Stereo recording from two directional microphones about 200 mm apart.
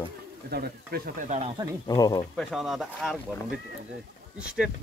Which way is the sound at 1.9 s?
20° left (ahead or behind).